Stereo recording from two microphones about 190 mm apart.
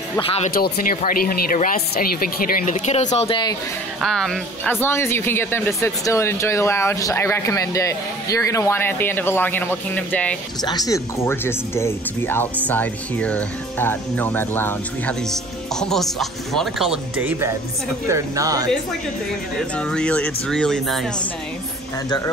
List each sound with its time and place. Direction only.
0.2 s speech: 30° left (ahead or behind)
0.5 s speech: 50° left (ahead or behind)
3.3 s speech: 25° left (ahead or behind)
4.0 s a woman's voice: centre (ahead or behind)
10.6 s a woman's voice: 20° left (ahead or behind); by 18.7 s 20° right (ahead or behind)
19.8 s speech: 5° left (ahead or behind)